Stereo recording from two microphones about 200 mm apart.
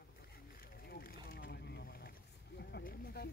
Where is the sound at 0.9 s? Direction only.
50° left (ahead or behind).